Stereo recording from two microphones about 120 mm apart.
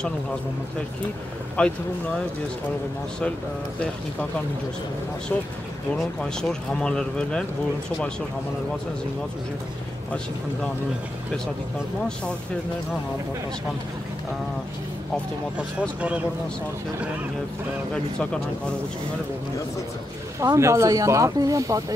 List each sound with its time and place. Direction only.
1.6 s speech: 10° left (ahead or behind)
5.3 s speech: 15° left (ahead or behind)
17.9 s speech: 10° left (ahead or behind)
20.3 s speech: 25° right (ahead or behind)